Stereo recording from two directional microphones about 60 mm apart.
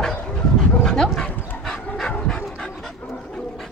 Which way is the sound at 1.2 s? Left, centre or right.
Left.